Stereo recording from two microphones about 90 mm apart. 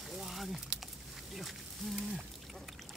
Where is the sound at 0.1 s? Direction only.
Centre (ahead or behind).